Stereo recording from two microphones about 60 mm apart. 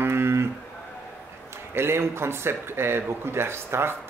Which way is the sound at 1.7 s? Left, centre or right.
Right.